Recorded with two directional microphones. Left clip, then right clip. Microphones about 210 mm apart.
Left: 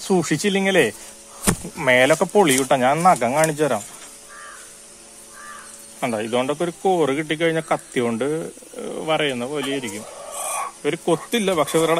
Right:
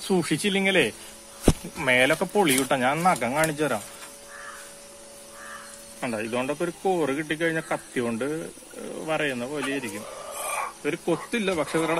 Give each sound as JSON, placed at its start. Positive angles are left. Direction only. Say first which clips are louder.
{"t": 0.0, "sound": "speech", "louder": "left 5 dB", "side_deg": 25}
{"t": 5.9, "sound": "speech", "louder": "left 6 dB", "side_deg": 40}